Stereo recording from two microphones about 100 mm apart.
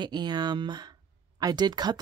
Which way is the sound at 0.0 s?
45° right (ahead or behind).